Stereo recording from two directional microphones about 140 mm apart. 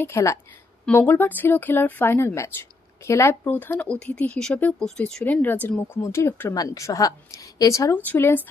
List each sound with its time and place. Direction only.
0.0 s a woman's voice: 20° left (ahead or behind)
6.5 s a woman's voice: 25° left (ahead or behind)
7.9 s speech: 10° left (ahead or behind)